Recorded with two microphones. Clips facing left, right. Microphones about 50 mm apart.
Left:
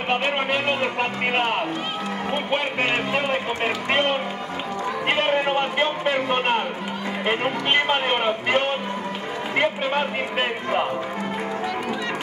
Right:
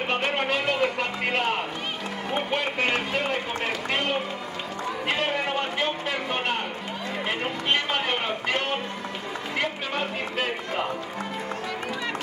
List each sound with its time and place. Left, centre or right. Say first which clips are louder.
0.1 s speech: left 4 dB; left